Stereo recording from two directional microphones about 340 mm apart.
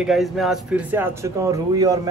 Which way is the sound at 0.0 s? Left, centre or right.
Centre.